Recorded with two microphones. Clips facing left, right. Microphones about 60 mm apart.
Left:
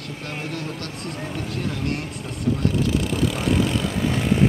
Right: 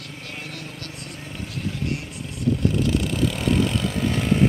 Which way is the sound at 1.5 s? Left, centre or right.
Left.